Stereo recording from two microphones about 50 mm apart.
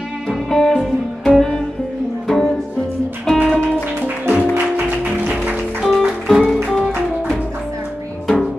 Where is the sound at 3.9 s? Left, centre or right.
Right.